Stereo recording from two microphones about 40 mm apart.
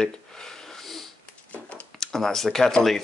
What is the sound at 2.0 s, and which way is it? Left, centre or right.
Speech, centre.